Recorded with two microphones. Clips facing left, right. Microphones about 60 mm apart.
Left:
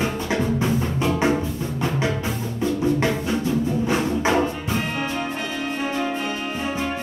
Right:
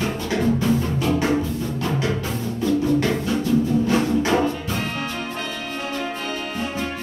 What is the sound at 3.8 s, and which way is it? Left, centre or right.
Music, centre.